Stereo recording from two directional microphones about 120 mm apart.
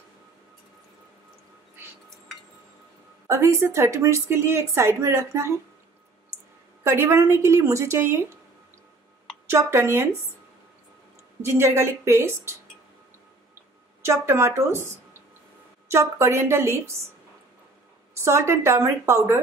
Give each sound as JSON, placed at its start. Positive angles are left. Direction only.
{"t": 3.3, "sound": "a woman's voice", "side_deg": -25}
{"t": 6.8, "sound": "a woman's voice", "side_deg": -20}
{"t": 9.5, "sound": "a woman's voice", "side_deg": -20}
{"t": 11.4, "sound": "a woman's voice", "side_deg": -20}
{"t": 14.0, "sound": "a woman's voice", "side_deg": -20}
{"t": 18.2, "sound": "a woman's voice", "side_deg": -25}